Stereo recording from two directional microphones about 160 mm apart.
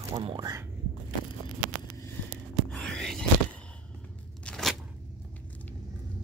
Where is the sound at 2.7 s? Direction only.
5° left (ahead or behind).